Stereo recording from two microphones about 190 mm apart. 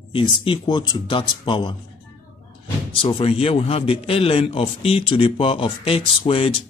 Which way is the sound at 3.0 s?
30° left (ahead or behind).